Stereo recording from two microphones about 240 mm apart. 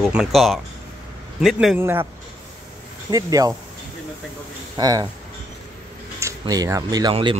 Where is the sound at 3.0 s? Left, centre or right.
Centre.